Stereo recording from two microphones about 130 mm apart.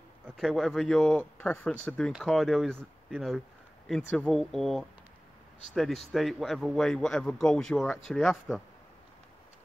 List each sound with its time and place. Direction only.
0.4 s speech: centre (ahead or behind)